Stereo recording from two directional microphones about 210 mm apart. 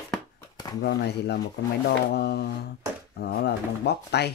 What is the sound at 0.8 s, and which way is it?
Speech, 50° left (ahead or behind).